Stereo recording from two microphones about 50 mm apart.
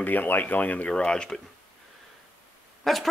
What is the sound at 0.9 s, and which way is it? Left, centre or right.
Speech, centre.